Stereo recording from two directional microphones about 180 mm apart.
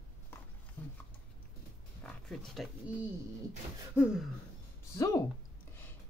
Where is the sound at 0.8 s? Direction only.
10° left (ahead or behind).